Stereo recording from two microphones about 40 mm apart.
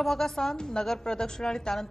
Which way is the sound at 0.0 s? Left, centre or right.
Centre.